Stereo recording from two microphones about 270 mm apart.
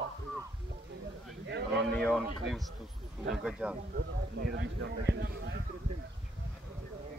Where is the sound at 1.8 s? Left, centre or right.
Centre.